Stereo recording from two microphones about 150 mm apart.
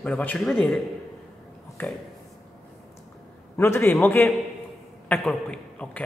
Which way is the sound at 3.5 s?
15° left (ahead or behind).